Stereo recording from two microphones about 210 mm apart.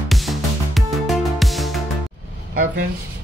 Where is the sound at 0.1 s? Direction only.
Centre (ahead or behind).